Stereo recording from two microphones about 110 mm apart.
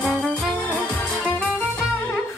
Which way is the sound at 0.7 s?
10° left (ahead or behind).